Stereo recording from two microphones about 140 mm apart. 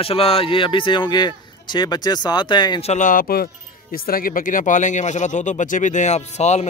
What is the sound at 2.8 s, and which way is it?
Speech, 50° left (ahead or behind).